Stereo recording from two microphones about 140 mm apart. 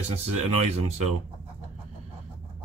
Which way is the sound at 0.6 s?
50° right (ahead or behind).